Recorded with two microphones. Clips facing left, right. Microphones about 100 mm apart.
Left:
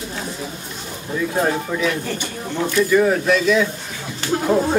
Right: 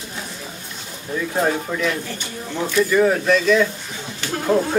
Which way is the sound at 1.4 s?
Centre (ahead or behind).